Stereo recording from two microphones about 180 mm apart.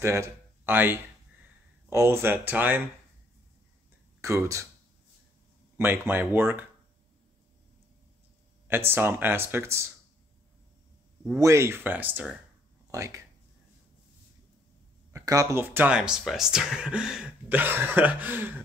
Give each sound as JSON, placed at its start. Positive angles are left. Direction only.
{"t": 0.0, "sound": "speech", "side_deg": -15}
{"t": 4.2, "sound": "speech", "side_deg": -15}
{"t": 5.8, "sound": "speech", "side_deg": -10}
{"t": 8.6, "sound": "speech", "side_deg": -10}
{"t": 11.3, "sound": "speech", "side_deg": -15}
{"t": 15.1, "sound": "speech", "side_deg": -15}